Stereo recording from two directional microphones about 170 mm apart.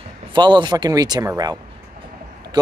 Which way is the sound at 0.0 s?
25° right (ahead or behind).